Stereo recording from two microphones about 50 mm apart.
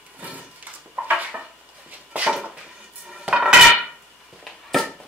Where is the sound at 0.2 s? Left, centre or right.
Right.